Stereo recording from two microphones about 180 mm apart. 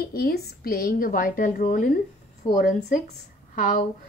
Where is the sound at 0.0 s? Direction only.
60° left (ahead or behind).